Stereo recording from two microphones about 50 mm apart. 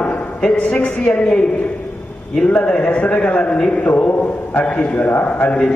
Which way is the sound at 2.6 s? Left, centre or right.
Left.